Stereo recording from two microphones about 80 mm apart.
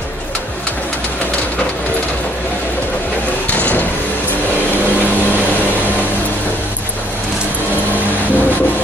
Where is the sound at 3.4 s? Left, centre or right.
Centre.